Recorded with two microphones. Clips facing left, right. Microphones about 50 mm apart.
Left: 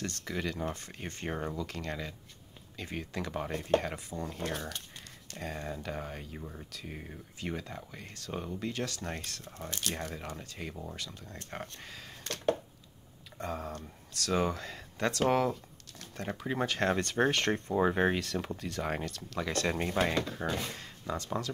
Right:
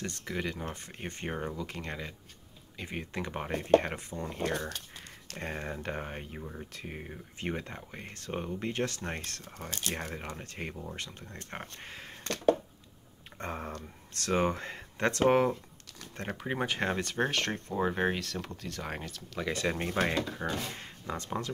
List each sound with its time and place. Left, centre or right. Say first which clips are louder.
0.0 s speech: even; centre; by 4.2 s right
4.2 s speech: right 3 dB; right
5.4 s speech: right 1 dB; right
6.3 s speech: right 2 dB; centre
6.7 s speech: right 2 dB; right
13.4 s speech: even; right
16.5 s speech: left 2 dB; centre
16.9 s speech: left 2 dB; centre
20.4 s speech: even; centre
21.1 s speech: left 1 dB; right